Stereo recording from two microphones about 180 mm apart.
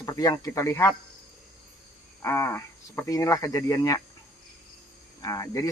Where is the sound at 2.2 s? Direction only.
15° left (ahead or behind).